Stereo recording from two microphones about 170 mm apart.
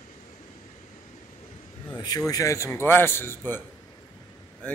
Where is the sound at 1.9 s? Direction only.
20° left (ahead or behind).